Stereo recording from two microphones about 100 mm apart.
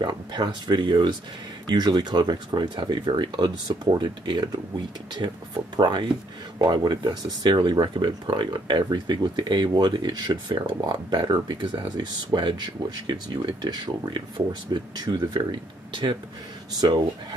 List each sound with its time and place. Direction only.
0.0 s speech: 45° right (ahead or behind)